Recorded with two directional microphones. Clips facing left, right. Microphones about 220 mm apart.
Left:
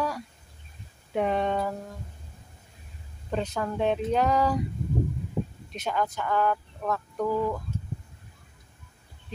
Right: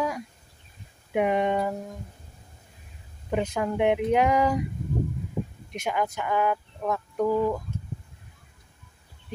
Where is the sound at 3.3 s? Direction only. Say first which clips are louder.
Right 3 dB; 15° right (ahead or behind).